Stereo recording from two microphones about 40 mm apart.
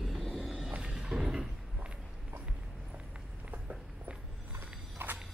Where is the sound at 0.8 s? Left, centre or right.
Centre.